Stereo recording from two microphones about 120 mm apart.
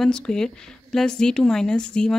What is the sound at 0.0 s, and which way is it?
Speech, 5° left (ahead or behind).